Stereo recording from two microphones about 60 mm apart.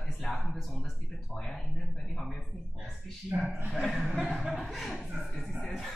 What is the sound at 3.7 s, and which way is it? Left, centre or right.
Speech, centre.